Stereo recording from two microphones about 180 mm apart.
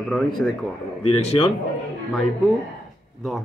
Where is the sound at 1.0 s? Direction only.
35° left (ahead or behind).